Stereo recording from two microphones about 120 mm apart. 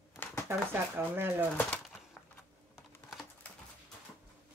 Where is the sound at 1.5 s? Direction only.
10° left (ahead or behind).